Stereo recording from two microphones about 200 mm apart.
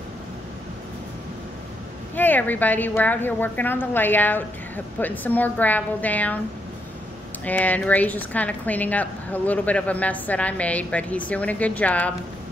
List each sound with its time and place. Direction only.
2.1 s a woman's voice: 10° left (ahead or behind)
7.4 s a woman's voice: 10° left (ahead or behind)